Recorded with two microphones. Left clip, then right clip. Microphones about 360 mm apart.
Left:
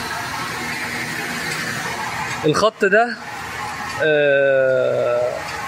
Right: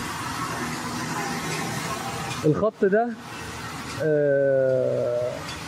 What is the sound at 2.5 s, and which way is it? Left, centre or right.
Speech, left.